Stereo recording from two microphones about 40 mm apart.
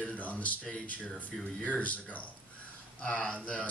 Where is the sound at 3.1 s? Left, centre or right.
Left.